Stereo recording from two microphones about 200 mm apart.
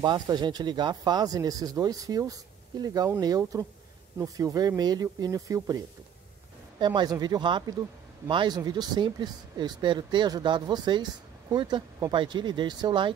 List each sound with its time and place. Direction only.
0.0 s speech: 20° right (ahead or behind)
6.8 s speech: 20° right (ahead or behind)